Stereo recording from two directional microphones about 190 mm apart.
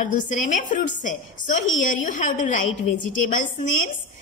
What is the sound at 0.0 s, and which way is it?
A woman's voice, 40° left (ahead or behind).